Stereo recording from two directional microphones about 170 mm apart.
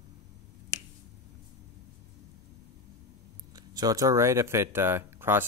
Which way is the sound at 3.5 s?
20° right (ahead or behind).